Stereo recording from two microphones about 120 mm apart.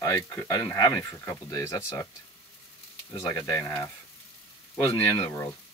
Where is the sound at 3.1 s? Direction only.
25° left (ahead or behind).